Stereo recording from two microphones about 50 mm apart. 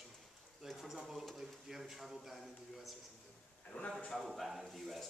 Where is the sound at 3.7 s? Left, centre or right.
Left.